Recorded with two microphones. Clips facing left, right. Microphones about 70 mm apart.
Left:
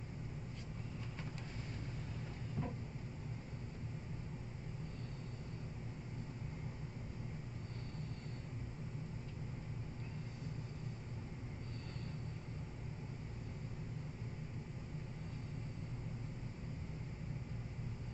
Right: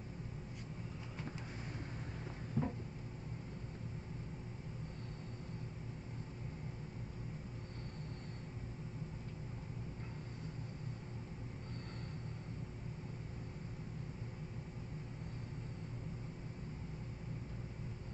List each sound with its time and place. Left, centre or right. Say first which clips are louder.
2.6 s vehicle: right 5 dB; right